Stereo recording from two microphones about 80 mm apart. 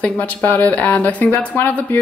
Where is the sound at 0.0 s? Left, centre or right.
Centre.